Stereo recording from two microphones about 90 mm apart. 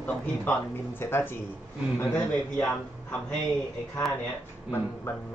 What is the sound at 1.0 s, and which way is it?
Speech, 25° left (ahead or behind).